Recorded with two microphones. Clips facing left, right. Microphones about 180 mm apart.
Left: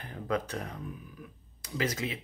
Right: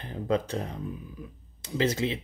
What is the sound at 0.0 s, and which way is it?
Speech, 25° right (ahead or behind).